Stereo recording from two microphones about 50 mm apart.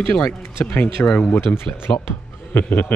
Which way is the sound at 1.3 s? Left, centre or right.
Left.